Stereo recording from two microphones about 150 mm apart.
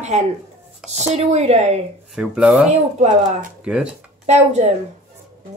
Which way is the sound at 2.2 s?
5° right (ahead or behind).